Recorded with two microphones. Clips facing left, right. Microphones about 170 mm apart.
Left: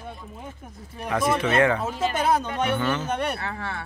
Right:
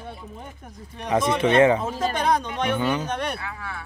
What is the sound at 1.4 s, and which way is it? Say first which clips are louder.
Speech: right 6 dB; 25° right (ahead or behind).